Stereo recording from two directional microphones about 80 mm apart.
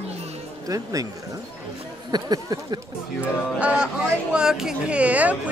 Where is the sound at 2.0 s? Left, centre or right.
Right.